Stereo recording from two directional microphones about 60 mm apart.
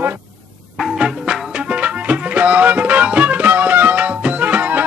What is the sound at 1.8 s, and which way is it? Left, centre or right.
Music, right.